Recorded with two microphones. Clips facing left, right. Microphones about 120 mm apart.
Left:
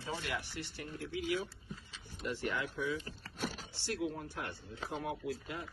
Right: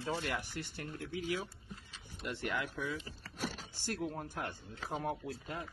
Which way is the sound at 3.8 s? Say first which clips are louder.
Left 1 dB; 45° right (ahead or behind).